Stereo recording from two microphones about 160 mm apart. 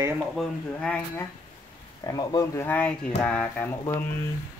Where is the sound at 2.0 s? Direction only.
20° left (ahead or behind).